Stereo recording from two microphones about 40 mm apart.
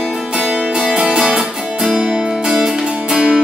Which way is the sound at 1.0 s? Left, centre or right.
Centre.